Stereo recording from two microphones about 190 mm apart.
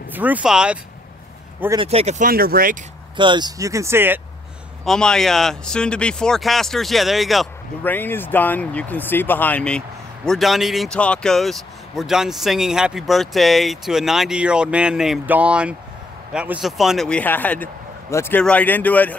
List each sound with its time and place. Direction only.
0.1 s a man's voice: 10° right (ahead or behind)
1.8 s speech: 35° right (ahead or behind); by 2.8 s 50° right (ahead or behind)
3.2 s speech: 25° right (ahead or behind)
4.8 s a man's voice: 5° left (ahead or behind)